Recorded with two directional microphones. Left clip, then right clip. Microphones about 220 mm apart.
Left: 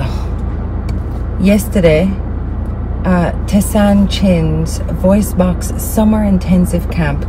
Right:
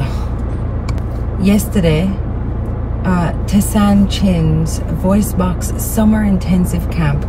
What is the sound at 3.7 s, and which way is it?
A woman's voice, 20° left (ahead or behind).